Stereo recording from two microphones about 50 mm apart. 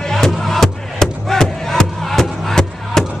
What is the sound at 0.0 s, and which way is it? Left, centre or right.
Music, centre.